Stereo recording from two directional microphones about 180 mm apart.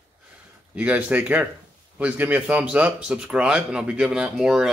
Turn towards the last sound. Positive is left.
turn(degrees=-5)  # may be behind; listen again after turning